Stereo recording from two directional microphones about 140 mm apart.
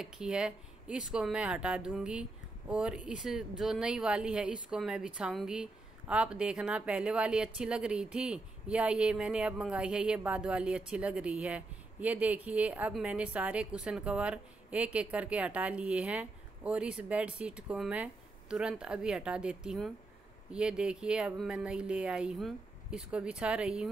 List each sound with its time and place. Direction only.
0.0 s a woman's voice: 5° right (ahead or behind)